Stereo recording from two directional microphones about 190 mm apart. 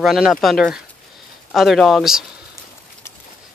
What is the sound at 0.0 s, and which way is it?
Speech, centre (ahead or behind).